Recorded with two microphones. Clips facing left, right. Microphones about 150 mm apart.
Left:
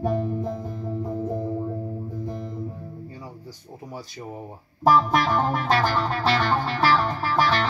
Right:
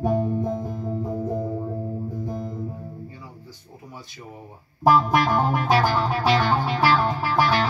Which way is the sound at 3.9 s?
40° left (ahead or behind).